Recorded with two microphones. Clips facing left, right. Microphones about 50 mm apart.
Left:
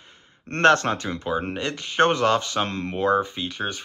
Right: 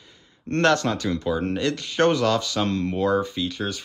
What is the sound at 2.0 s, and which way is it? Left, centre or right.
Speech, left.